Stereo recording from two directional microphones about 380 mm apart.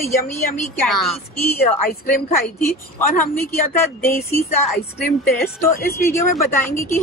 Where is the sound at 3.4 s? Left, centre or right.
Centre.